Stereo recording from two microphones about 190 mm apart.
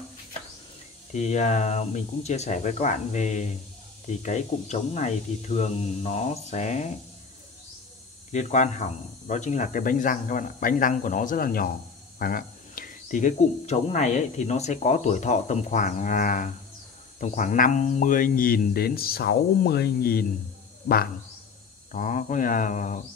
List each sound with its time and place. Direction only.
1.1 s speech: 35° left (ahead or behind)
8.3 s speech: 40° left (ahead or behind)
21.9 s speech: 40° left (ahead or behind)